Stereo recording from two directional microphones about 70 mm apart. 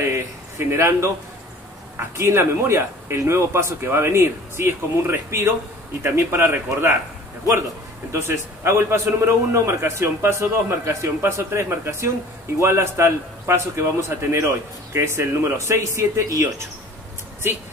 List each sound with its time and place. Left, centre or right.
0.1 s a man's voice: right
8.1 s a man's voice: right